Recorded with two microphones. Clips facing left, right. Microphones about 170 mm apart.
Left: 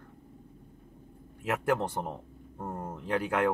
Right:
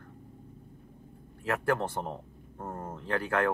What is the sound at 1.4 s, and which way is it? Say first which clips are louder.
A man's voice: even; 20° left (ahead or behind).